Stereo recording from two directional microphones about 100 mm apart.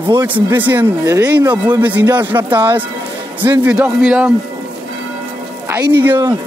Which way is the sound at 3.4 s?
20° right (ahead or behind).